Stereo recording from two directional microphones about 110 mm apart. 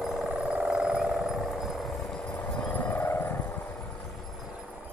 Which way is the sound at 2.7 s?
15° left (ahead or behind).